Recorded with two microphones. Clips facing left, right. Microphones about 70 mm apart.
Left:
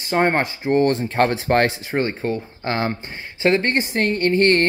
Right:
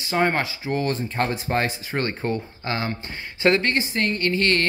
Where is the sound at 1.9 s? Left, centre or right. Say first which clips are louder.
Left 4 dB; centre.